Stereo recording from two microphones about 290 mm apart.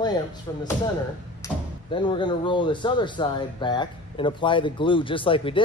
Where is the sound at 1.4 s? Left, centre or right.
Centre.